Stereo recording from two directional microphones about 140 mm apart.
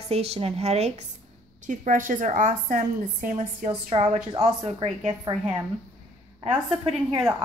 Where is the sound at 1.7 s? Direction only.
70° right (ahead or behind).